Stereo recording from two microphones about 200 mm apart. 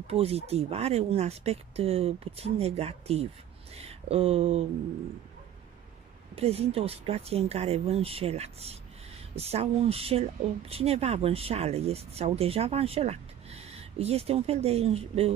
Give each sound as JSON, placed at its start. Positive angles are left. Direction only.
{"t": 0.0, "sound": "speech", "side_deg": -30}
{"t": 6.3, "sound": "speech", "side_deg": -30}